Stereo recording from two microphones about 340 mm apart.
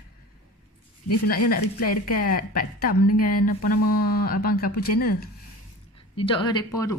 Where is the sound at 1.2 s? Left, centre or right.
Left.